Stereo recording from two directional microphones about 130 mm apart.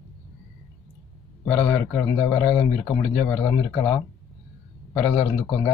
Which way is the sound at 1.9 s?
25° left (ahead or behind).